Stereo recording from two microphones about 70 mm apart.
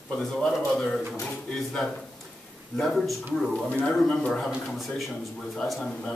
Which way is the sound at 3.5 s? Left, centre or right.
Centre.